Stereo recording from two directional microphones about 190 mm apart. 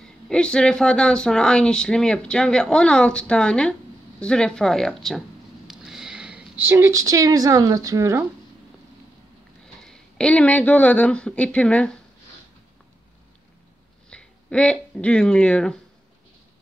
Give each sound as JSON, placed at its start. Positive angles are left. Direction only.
{"t": 0.0, "sound": "speech", "side_deg": 5}
{"t": 5.7, "sound": "sniff", "side_deg": 0}
{"t": 6.6, "sound": "speech", "side_deg": -15}
{"t": 9.8, "sound": "speech", "side_deg": 5}
{"t": 14.1, "sound": "speech", "side_deg": 5}